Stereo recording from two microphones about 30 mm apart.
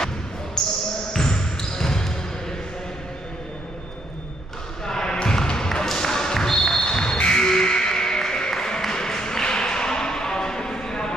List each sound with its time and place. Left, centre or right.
0.6 s basketball bounce: centre
4.8 s basketball bounce: left
7.2 s music: left